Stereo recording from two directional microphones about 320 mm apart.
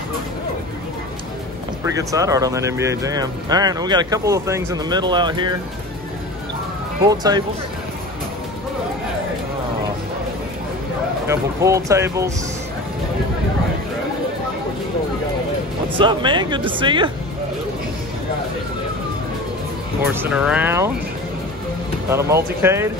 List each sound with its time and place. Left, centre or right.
1.9 s speech: centre
7.1 s speech: centre
11.2 s speech: centre
16.0 s speech: centre
20.1 s speech: centre
22.1 s speech: centre